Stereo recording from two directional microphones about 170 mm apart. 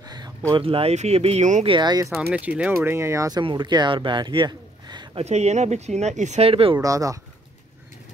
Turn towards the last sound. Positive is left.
turn(degrees=-20)  # may be behind; listen again after turning